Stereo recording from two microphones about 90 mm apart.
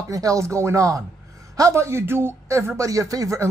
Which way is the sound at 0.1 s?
40° right (ahead or behind).